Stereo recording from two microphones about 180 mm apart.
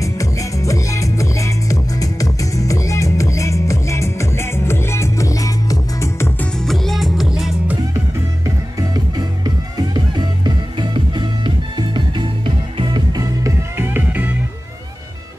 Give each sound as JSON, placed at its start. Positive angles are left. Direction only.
{"t": 0.0, "sound": "music", "side_deg": 20}
{"t": 6.6, "sound": "music", "side_deg": 0}
{"t": 8.5, "sound": "music", "side_deg": -20}